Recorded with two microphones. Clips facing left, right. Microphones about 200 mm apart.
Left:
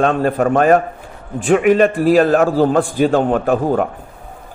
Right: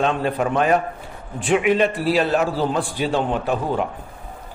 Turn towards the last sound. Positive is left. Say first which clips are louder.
# left 6 dB
turn(degrees=50)  # may be behind; listen again after turning